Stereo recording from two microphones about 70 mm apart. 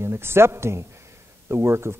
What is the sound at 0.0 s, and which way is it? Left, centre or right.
Speech, right.